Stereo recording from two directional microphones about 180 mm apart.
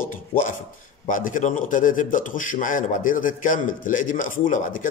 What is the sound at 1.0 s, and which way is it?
A man's voice, 50° left (ahead or behind).